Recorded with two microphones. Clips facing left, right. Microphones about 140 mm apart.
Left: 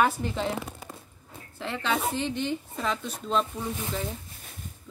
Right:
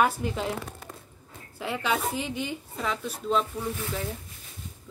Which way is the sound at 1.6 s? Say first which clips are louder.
Even; 10° right (ahead or behind).